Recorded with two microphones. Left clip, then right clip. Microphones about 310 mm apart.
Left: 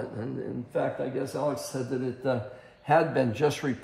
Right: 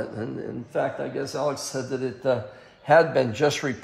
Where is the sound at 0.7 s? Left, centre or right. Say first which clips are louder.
Right 3 dB; right.